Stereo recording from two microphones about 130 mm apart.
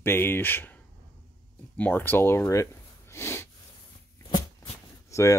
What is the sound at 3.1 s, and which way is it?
Snort, 20° left (ahead or behind).